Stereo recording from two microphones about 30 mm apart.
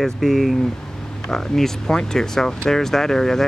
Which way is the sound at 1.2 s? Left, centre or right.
Centre.